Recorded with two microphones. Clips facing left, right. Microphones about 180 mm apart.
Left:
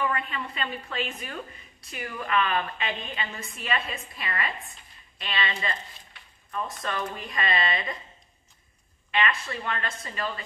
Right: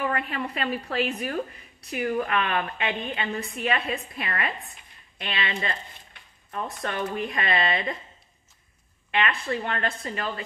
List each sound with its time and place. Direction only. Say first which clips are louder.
0.0 s a woman's voice: right 2 dB; 60° right (ahead or behind)
9.1 s speech: right 2 dB; 60° right (ahead or behind)